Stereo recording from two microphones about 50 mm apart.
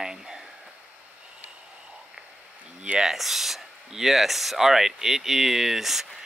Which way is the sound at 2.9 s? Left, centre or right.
Centre.